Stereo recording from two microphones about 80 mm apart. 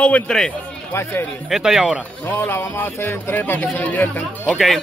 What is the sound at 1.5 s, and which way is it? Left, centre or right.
Speech, centre.